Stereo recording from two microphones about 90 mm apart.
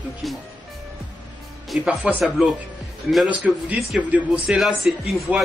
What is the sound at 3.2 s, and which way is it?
Speech, 15° right (ahead or behind).